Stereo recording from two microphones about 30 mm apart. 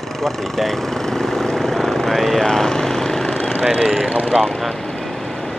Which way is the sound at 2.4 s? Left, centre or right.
Centre.